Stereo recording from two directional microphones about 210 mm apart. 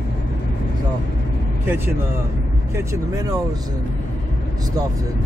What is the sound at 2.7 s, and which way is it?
Speech, 15° right (ahead or behind).